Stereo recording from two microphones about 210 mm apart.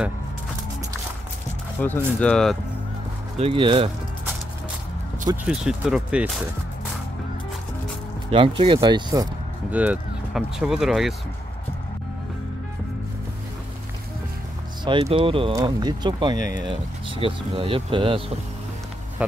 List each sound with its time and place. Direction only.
1.8 s speech: 5° left (ahead or behind)
3.3 s speech: 25° right (ahead or behind)
5.2 s speech: 10° right (ahead or behind)
8.3 s speech: 25° right (ahead or behind)
9.7 s speech: 5° right (ahead or behind)
14.9 s speech: 25° right (ahead or behind)